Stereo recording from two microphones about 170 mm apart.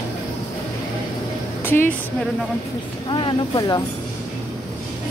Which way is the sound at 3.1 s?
30° left (ahead or behind).